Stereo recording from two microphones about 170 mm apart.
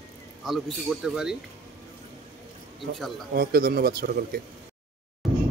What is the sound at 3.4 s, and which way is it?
A man's voice, 60° right (ahead or behind).